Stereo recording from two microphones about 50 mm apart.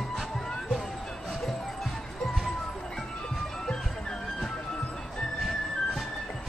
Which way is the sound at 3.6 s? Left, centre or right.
Centre.